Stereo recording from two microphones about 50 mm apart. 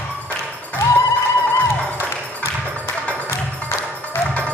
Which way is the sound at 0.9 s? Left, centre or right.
Left.